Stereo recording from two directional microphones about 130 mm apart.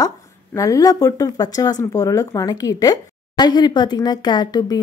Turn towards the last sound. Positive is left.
turn(degrees=30)  # may be behind; listen again after turning